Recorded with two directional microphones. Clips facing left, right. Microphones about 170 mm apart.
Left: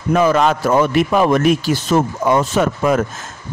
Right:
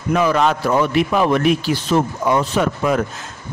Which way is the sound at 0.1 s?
45° left (ahead or behind).